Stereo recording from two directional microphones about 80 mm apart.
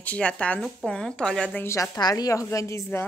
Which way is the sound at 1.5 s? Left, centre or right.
Left.